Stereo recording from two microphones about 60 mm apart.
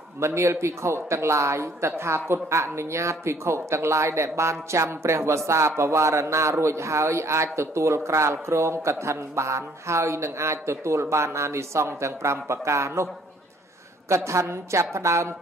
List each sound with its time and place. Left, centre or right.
0.2 s speech: right